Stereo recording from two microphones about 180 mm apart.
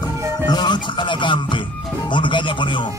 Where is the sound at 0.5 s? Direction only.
25° left (ahead or behind).